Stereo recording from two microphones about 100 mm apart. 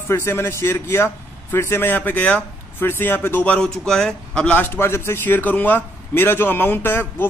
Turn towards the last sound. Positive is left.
turn(degrees=20)  # may be behind; listen again after turning